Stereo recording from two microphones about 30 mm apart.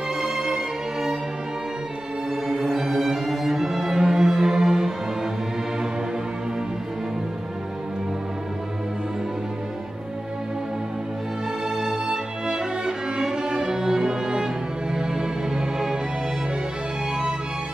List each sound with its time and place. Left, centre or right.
0.2 s music: right
2.4 s music: centre
11.9 s music: right